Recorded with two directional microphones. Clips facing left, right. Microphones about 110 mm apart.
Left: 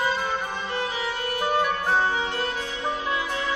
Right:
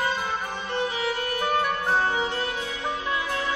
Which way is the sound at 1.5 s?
Centre (ahead or behind).